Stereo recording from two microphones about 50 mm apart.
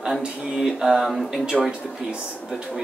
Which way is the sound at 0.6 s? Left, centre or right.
Centre.